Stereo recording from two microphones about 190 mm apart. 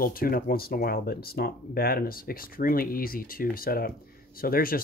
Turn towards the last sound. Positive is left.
turn(degrees=50)  # may be behind; listen again after turning